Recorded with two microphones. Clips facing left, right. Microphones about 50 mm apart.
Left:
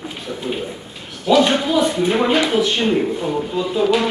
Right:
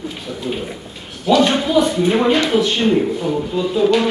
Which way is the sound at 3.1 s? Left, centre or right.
Centre.